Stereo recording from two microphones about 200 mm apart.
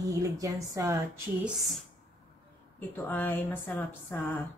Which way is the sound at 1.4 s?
Centre (ahead or behind).